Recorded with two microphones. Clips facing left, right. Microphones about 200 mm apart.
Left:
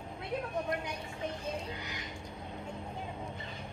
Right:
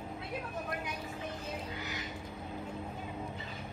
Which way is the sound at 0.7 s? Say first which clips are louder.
Left 3 dB; 5° right (ahead or behind).